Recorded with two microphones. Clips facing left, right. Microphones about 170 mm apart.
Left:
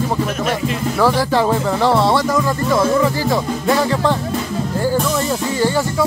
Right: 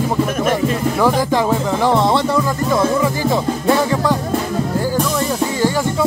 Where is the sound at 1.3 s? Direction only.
15° right (ahead or behind).